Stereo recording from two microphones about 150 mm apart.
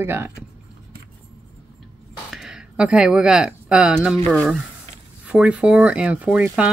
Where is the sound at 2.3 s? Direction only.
5° right (ahead or behind).